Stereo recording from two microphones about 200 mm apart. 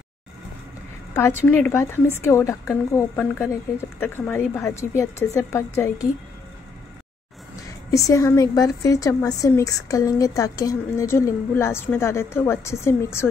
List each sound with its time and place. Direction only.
1.1 s a woman's voice: 10° left (ahead or behind)
7.9 s a woman's voice: 15° left (ahead or behind)